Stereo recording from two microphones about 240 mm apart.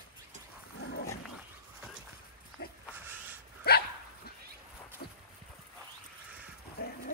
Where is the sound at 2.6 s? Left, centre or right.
Left.